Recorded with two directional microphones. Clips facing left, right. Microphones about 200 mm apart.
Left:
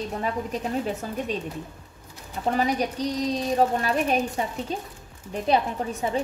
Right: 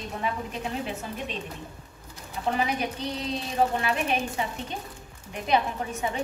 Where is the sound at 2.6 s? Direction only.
40° left (ahead or behind).